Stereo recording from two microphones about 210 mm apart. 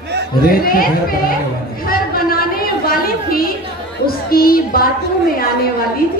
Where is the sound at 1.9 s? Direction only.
45° left (ahead or behind).